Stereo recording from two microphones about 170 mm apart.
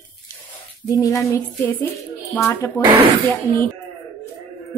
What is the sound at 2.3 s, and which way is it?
Speech, 15° left (ahead or behind).